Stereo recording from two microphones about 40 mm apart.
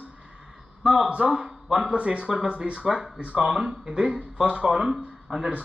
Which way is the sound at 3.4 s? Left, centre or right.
Centre.